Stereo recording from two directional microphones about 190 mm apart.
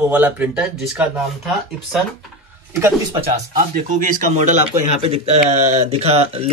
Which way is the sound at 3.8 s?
40° right (ahead or behind).